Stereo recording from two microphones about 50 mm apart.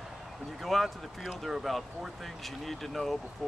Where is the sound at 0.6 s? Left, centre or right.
Centre.